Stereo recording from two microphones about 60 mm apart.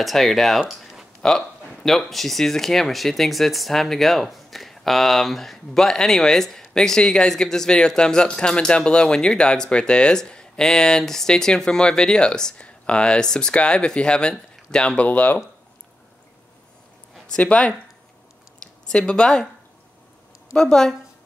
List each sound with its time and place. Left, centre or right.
0.0 s speech: centre
15.0 s speech: left
17.4 s speech: left
18.6 s a sound: centre
20.5 s speech: centre